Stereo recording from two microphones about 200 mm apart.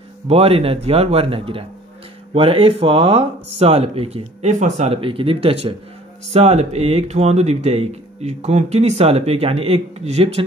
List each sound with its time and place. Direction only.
0.3 s speech: 30° right (ahead or behind)